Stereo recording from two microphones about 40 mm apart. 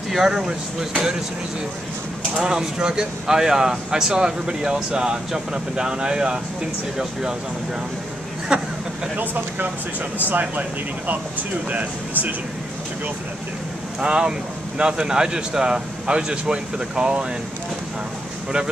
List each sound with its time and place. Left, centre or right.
0.1 s speech: centre
2.4 s speech: centre
8.5 s speech: right
9.1 s speech: right
10.4 s speech: right
11.7 s speech: right
14.0 s speech: right